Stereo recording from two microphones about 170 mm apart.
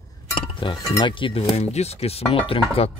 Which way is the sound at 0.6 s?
25° left (ahead or behind).